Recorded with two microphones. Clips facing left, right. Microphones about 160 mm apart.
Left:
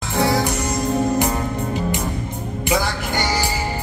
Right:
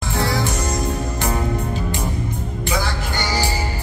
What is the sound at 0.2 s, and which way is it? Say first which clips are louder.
Music: left 4 dB; 15° left (ahead or behind).